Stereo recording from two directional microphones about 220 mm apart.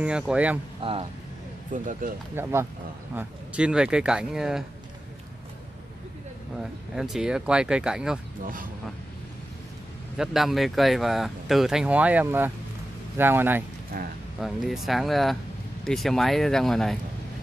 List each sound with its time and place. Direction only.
0.0 s speech: 5° right (ahead or behind)
0.8 s speech: 25° right (ahead or behind)
1.7 s speech: 35° right (ahead or behind)
2.4 s speech: 10° right (ahead or behind)
6.6 s speech: centre (ahead or behind)
10.1 s speech: centre (ahead or behind)
13.9 s speech: 40° right (ahead or behind)
14.4 s speech: centre (ahead or behind)